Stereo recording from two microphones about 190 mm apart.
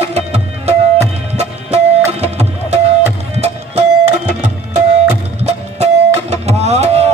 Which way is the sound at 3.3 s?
35° right (ahead or behind).